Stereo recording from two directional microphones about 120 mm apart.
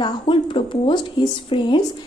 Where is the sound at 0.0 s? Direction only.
45° left (ahead or behind).